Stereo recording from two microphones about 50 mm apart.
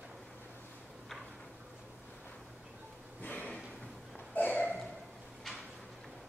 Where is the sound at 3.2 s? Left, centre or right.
Left.